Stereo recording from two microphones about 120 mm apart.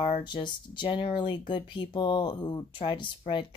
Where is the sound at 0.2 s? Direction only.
40° left (ahead or behind).